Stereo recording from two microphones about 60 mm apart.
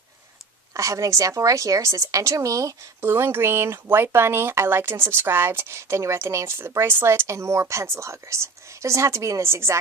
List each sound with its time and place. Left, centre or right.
0.7 s a woman's voice: right
3.0 s speech: right